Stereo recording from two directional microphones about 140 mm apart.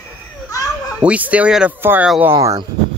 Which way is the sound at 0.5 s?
25° left (ahead or behind).